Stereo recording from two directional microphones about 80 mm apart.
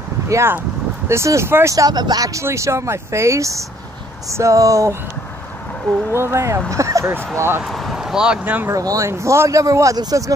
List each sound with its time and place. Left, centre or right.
0.3 s a man's voice: right
1.9 s speech: right
2.4 s a man's voice: right
6.1 s a man's voice: right
6.7 s a sound: right
7.3 s a man's voice: right
7.6 s a sound: centre
8.6 s a man's voice: right